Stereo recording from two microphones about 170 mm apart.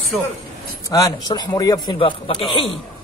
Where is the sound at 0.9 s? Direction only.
20° left (ahead or behind).